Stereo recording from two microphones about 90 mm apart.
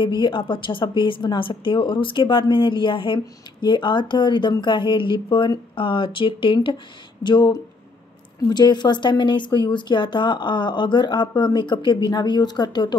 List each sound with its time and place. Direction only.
0.0 s a woman's voice: 60° left (ahead or behind)